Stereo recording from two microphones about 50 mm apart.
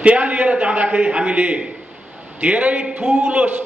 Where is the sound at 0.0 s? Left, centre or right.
Right.